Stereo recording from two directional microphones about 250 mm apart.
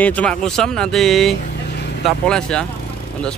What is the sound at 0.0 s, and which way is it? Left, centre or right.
Speech, centre.